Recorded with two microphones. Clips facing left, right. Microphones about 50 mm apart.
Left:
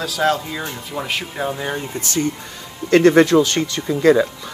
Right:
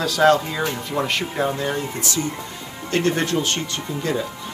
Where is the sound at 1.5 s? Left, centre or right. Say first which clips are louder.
Right 1 dB; centre.